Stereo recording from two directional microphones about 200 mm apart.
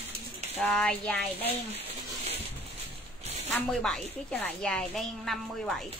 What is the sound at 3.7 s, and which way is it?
A woman's voice, centre (ahead or behind).